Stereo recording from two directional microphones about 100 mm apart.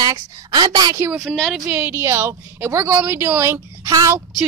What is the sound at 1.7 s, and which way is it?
A woman's voice, 20° right (ahead or behind).